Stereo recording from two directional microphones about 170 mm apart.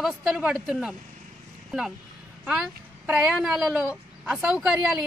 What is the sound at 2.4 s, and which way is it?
Speech, 5° right (ahead or behind).